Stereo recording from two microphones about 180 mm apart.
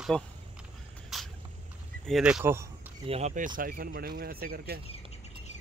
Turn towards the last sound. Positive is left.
turn(degrees=-55)  # may be behind; listen again after turning